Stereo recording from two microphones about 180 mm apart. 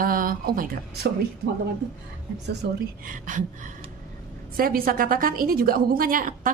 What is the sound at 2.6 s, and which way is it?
Speech, 65° right (ahead or behind).